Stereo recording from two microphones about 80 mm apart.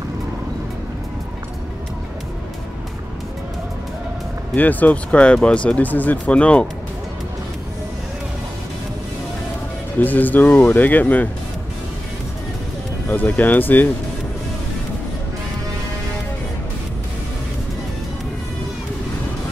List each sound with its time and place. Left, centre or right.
4.6 s speech: left
9.9 s speech: left
13.1 s speech: left